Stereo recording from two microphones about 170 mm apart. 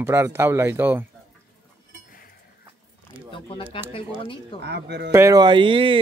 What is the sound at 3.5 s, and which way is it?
Speech, 30° left (ahead or behind).